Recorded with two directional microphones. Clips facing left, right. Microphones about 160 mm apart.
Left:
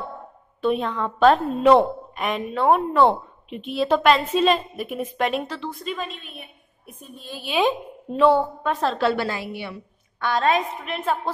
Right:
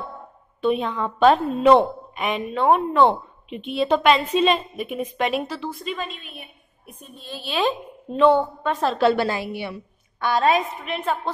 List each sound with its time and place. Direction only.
0.6 s a woman's voice: centre (ahead or behind)
7.2 s a woman's voice: 10° left (ahead or behind)
8.9 s a woman's voice: 25° right (ahead or behind)
9.5 s a woman's voice: 15° right (ahead or behind); by 11.3 s centre (ahead or behind)